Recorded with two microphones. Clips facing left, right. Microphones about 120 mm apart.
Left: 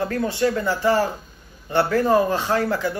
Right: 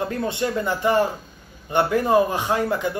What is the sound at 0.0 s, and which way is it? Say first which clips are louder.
A man's voice: left 3 dB; 20° right (ahead or behind).